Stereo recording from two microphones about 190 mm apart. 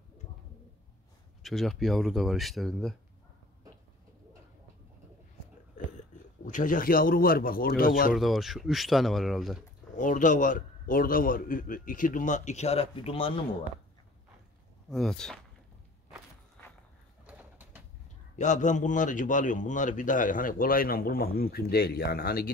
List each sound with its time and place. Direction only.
1.4 s speech: centre (ahead or behind)
5.9 s speech: 40° left (ahead or behind)
8.1 s speech: centre (ahead or behind)
9.9 s a man's voice: 45° left (ahead or behind)
14.9 s speech: centre (ahead or behind)
17.3 s bird: 10° right (ahead or behind)
18.4 s a man's voice: 40° left (ahead or behind)